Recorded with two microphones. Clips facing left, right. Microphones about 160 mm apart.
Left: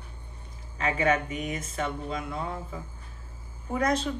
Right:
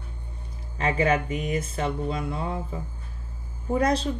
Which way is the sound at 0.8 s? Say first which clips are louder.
Right 2 dB; 30° right (ahead or behind).